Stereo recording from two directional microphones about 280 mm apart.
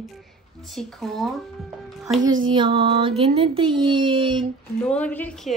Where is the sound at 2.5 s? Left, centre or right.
Centre.